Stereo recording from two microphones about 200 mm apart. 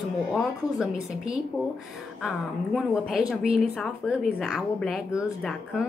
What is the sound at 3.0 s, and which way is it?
Speech, 5° right (ahead or behind).